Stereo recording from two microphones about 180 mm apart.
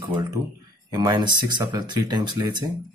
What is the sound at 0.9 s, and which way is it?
Speech, 25° right (ahead or behind).